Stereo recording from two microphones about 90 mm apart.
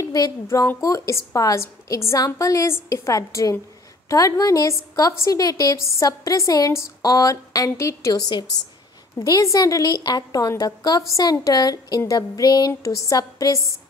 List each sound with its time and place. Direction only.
0.0 s a woman's voice: 40° left (ahead or behind)
8.1 s a woman's voice: 50° left (ahead or behind)
9.2 s a woman's voice: 40° left (ahead or behind)